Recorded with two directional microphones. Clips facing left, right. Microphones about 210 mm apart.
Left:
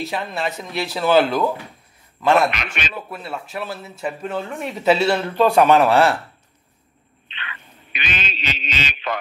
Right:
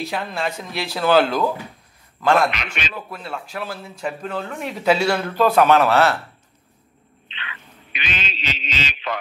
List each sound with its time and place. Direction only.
0.0 s a man's voice: centre (ahead or behind)
2.5 s a man's voice: 50° left (ahead or behind)
2.9 s a man's voice: 5° left (ahead or behind)
7.2 s a sound: 50° left (ahead or behind)